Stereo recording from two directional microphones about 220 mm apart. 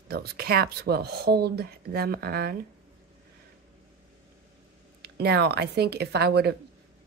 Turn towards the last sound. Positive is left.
turn(degrees=-45)  # may be behind; listen again after turning